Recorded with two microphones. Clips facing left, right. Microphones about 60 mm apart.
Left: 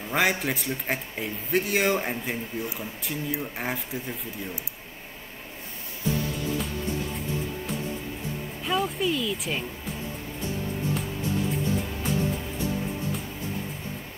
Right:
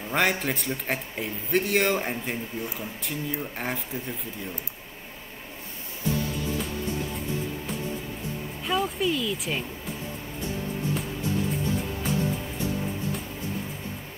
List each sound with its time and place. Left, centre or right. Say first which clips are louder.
0.1 s a man's voice: even; centre
8.6 s a man's voice: even; centre